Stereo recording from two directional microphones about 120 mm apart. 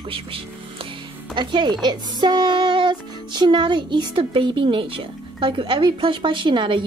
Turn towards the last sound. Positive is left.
turn(degrees=-40)  # may be behind; listen again after turning